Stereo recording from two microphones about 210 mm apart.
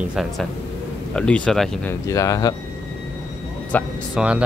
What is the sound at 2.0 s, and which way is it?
Speech, 15° left (ahead or behind).